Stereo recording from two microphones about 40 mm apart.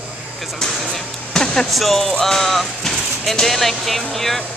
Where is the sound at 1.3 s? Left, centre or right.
Centre.